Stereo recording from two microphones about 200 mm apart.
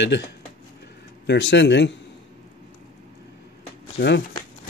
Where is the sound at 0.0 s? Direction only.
60° left (ahead or behind).